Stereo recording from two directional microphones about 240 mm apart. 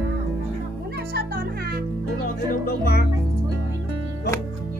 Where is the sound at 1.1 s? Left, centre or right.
Right.